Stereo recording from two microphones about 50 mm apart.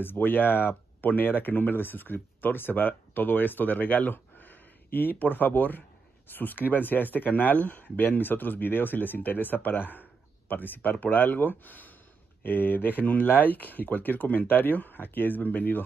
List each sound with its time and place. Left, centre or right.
0.0 s speech: left